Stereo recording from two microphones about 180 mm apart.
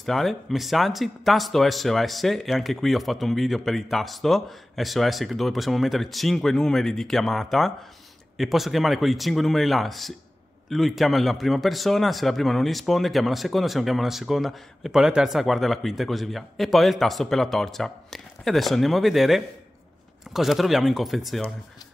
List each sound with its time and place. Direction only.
0.0 s a man's voice: centre (ahead or behind)